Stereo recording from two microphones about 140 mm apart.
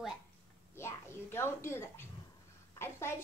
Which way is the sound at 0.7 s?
20° left (ahead or behind).